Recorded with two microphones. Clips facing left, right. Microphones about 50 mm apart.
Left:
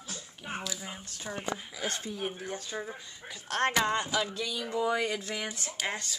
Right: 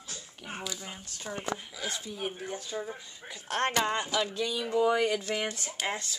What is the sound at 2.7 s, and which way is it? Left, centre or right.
Speech, centre.